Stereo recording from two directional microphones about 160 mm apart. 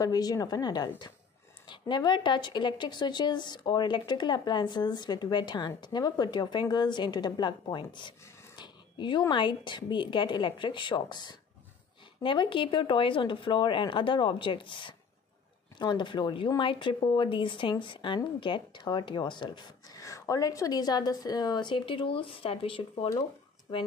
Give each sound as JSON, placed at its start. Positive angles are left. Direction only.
{"t": 0.0, "sound": "speech", "side_deg": 25}
{"t": 8.5, "sound": "a sound", "side_deg": 30}
{"t": 9.3, "sound": "speech", "side_deg": 30}